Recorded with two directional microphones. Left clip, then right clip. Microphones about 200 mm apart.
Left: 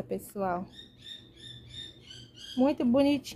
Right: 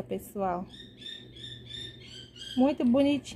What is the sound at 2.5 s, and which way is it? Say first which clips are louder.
Speech: even; centre (ahead or behind).